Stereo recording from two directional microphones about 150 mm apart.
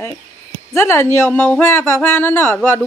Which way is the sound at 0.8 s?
15° left (ahead or behind).